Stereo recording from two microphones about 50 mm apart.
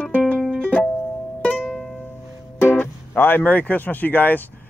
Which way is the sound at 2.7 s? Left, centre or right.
Left.